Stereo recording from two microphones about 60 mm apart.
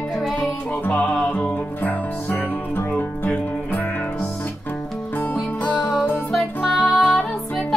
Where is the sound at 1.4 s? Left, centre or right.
Left.